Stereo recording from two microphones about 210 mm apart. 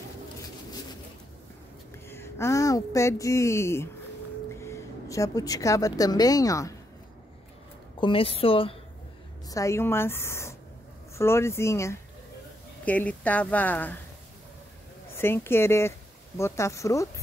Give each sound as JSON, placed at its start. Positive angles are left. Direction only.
{"t": 2.0, "sound": "speech", "side_deg": 10}
{"t": 8.0, "sound": "a woman's voice", "side_deg": 25}
{"t": 9.5, "sound": "a woman's voice", "side_deg": 15}
{"t": 15.1, "sound": "a woman's voice", "side_deg": 10}